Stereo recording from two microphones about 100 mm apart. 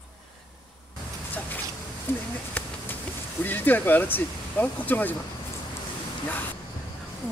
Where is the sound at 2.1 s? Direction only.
20° left (ahead or behind).